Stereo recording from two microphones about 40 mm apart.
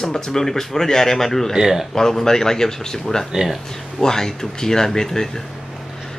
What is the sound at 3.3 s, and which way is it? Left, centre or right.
Speech, centre.